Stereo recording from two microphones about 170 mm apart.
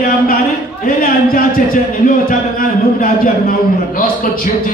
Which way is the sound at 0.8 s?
55° left (ahead or behind).